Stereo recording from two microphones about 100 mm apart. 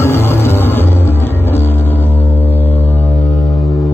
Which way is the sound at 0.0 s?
25° left (ahead or behind).